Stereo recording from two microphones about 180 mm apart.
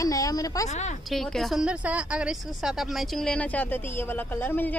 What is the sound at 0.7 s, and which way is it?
Speech, 40° left (ahead or behind).